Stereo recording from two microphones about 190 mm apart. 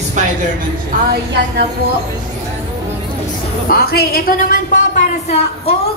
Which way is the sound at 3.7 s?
55° left (ahead or behind).